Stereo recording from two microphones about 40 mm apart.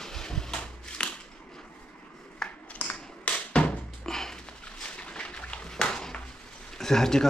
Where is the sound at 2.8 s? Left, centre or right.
Left.